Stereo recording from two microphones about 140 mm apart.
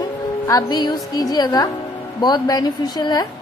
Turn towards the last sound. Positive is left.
turn(degrees=30)  # may be behind; listen again after turning